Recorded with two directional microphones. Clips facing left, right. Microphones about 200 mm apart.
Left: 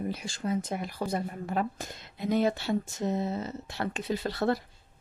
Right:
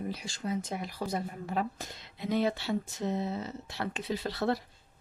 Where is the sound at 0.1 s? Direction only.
55° left (ahead or behind).